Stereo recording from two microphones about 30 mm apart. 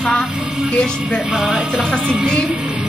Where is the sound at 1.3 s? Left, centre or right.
Centre.